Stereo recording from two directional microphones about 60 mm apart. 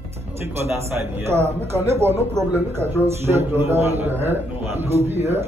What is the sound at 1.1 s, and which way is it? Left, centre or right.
A man's voice, right.